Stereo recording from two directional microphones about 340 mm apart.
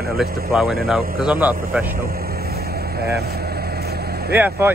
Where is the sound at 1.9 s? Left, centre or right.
Right.